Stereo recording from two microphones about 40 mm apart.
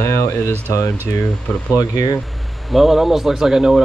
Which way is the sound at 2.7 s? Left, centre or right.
Centre.